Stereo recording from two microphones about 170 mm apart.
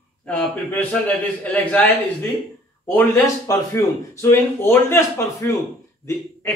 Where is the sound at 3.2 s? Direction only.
20° left (ahead or behind).